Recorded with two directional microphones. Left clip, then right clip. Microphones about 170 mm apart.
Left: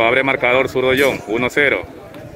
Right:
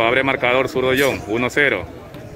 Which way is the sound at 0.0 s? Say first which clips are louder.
Left 2 dB; centre (ahead or behind).